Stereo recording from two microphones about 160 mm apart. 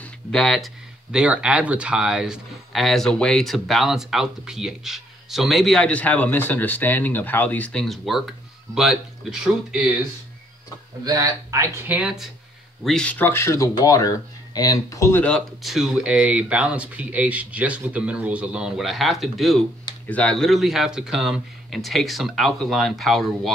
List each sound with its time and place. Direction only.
0.0 s a sound: 5° left (ahead or behind)
1.1 s speech: 5° right (ahead or behind)
11.1 s speech: 20° right (ahead or behind); by 12.3 s 5° right (ahead or behind)
12.8 s speech: 5° left (ahead or behind)